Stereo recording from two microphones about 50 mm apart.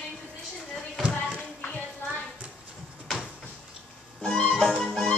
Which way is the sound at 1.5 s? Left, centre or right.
Left.